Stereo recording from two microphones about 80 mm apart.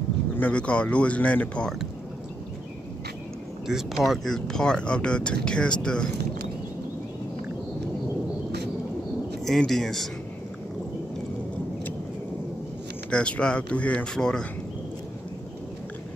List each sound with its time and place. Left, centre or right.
0.4 s speech: centre
3.6 s speech: centre
9.4 s speech: centre
13.1 s speech: centre